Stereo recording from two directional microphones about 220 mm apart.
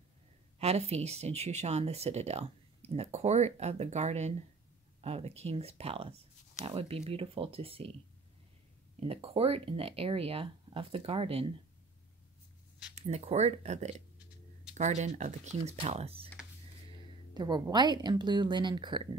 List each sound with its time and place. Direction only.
0.6 s speech: 30° right (ahead or behind)
9.0 s speech: 25° right (ahead or behind)
12.9 s speech: 30° right (ahead or behind)
17.3 s speech: 20° right (ahead or behind)